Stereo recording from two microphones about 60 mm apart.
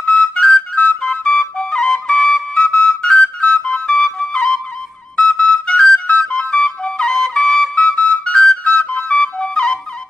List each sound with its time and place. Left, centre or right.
0.0 s flute: centre
2.5 s flute: centre